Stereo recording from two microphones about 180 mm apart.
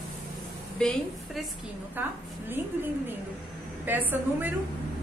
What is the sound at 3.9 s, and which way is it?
Speech, 10° right (ahead or behind).